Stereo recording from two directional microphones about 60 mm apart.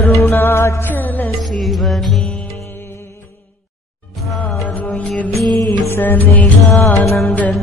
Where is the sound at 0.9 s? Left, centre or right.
Left.